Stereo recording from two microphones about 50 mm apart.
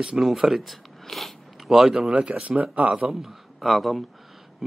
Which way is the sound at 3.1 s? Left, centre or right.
Centre.